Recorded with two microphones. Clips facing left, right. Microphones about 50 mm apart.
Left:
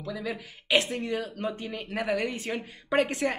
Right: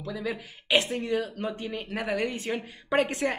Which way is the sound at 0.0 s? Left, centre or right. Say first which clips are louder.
Right 1 dB; centre.